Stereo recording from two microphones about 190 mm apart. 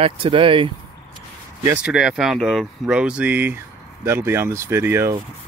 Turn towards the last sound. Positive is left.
turn(degrees=-15)  # may be behind; listen again after turning